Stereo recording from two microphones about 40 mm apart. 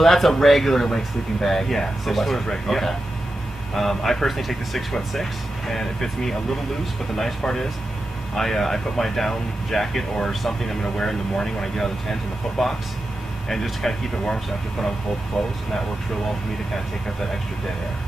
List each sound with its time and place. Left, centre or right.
0.0 s speech: centre
8.4 s speech: centre
13.8 s speech: centre
15.3 s speech: left